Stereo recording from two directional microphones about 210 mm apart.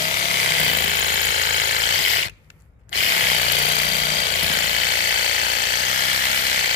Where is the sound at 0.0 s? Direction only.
35° left (ahead or behind).